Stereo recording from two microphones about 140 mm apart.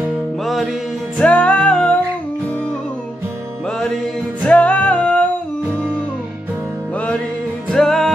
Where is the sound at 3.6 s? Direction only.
5° left (ahead or behind).